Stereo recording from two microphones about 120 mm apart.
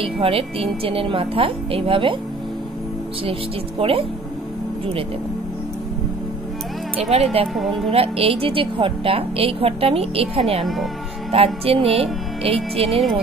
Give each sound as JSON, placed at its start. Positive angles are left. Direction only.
{"t": 0.0, "sound": "a woman's voice", "side_deg": -50}
{"t": 3.3, "sound": "a woman's voice", "side_deg": -50}
{"t": 7.1, "sound": "speech", "side_deg": -60}
{"t": 7.5, "sound": "speech", "side_deg": 0}
{"t": 7.9, "sound": "a woman's voice", "side_deg": -55}